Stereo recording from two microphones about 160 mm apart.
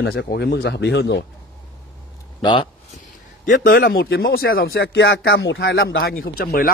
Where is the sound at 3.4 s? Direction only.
60° left (ahead or behind).